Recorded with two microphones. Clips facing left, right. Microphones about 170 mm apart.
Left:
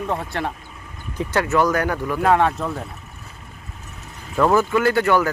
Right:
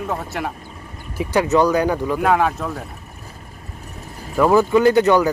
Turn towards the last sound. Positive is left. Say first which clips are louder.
# right 4 dB
turn(degrees=-15)  # may be behind; listen again after turning